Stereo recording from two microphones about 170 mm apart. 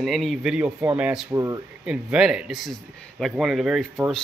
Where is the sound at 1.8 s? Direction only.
5° right (ahead or behind).